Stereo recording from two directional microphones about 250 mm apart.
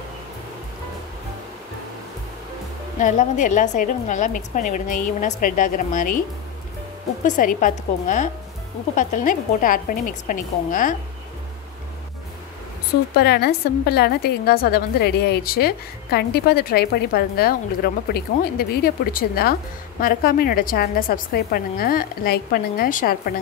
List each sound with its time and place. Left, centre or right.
3.0 s a woman's voice: left
7.2 s a woman's voice: left
13.1 s a woman's voice: left